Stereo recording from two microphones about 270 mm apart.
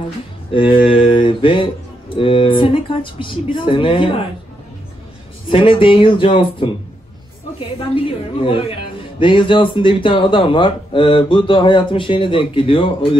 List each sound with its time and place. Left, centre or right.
0.5 s speech: centre
5.5 s speech: centre
7.9 s speech: centre